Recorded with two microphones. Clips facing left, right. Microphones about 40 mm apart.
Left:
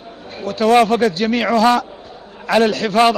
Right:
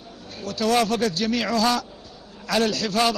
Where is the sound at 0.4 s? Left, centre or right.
Left.